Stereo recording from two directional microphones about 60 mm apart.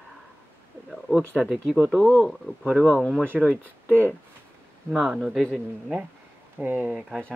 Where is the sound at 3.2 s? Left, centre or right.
Left.